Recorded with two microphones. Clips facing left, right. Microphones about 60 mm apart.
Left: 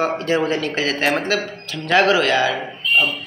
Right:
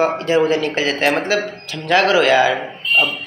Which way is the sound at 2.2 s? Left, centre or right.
Centre.